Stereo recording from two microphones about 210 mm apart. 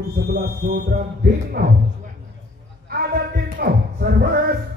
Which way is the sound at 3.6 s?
45° right (ahead or behind).